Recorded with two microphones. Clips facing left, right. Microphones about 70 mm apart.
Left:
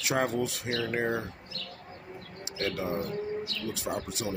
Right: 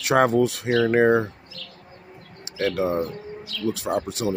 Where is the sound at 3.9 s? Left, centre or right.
Right.